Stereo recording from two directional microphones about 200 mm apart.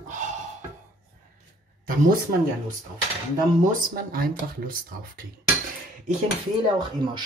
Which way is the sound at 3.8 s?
45° right (ahead or behind).